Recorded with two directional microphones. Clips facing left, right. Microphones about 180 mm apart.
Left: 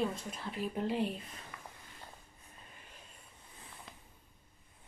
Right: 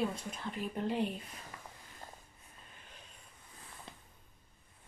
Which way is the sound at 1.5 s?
35° right (ahead or behind).